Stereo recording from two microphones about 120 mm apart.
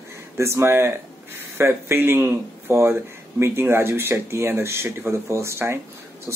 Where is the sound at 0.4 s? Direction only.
20° right (ahead or behind).